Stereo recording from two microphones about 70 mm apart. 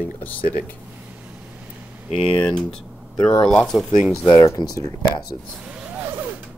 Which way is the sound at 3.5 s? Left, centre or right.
Centre.